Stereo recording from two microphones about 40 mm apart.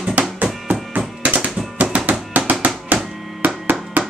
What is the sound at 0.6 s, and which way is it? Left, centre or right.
Tap, right.